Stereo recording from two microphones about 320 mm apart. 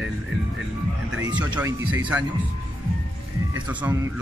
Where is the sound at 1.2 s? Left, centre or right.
Centre.